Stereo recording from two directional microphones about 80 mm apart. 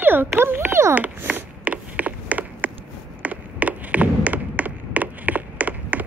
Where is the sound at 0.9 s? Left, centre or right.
Centre.